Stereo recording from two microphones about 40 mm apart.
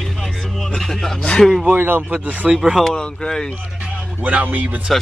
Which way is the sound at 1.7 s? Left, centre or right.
Right.